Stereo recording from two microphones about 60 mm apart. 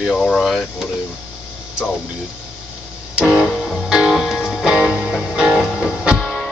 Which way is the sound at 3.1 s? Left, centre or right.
Centre.